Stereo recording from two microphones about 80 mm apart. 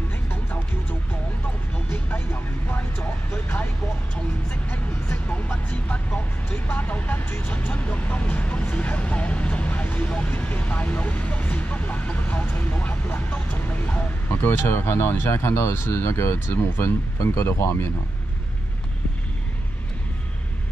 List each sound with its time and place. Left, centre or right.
0.3 s music: left
5.3 s music: left
14.3 s speech: left